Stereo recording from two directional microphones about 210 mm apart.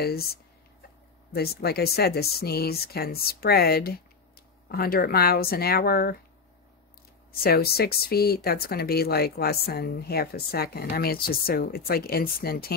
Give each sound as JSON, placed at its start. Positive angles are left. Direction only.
{"t": 0.0, "sound": "speech", "side_deg": 50}
{"t": 7.3, "sound": "speech", "side_deg": 45}